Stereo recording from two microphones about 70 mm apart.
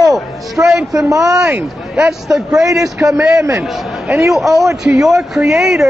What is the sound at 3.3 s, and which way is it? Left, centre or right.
Speech, right.